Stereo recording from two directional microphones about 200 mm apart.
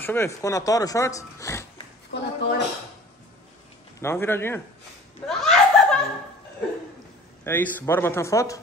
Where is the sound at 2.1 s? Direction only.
60° left (ahead or behind).